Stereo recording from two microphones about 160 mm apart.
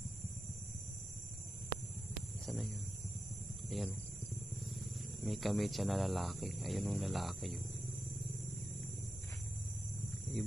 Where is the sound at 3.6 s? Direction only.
Centre (ahead or behind).